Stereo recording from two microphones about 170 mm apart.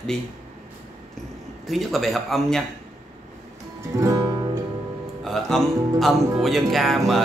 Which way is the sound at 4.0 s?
20° right (ahead or behind).